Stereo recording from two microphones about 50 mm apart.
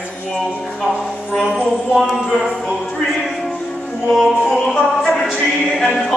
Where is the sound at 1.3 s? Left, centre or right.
Centre.